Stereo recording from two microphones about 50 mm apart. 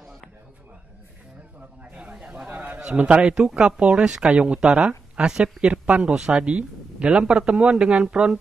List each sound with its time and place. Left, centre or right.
1.8 s a sound: right
3.0 s a man's voice: right
4.6 s speech: centre
5.7 s a man's voice: right